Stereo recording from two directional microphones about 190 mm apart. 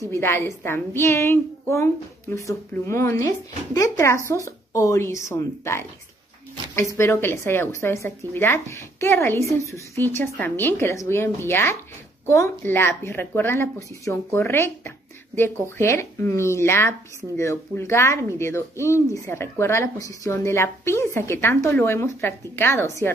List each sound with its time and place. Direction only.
0.1 s speech: 15° left (ahead or behind)
15.8 s speech: 15° left (ahead or behind)